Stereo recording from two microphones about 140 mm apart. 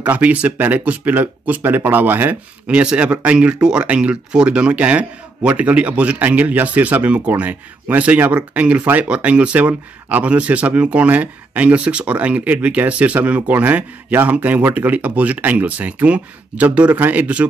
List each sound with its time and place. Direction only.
0.0 s speech: 10° right (ahead or behind)